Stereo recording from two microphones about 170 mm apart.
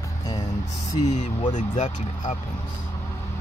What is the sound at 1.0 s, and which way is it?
Speech, 45° left (ahead or behind).